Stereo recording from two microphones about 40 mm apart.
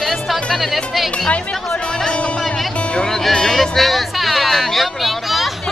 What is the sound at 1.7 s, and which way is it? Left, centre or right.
Speech, centre.